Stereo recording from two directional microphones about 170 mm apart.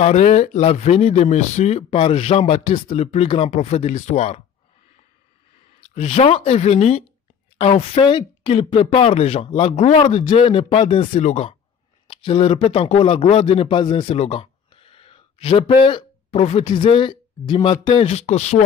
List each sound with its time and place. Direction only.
0.0 s speech: 40° left (ahead or behind)
5.9 s a man's voice: 40° left (ahead or behind)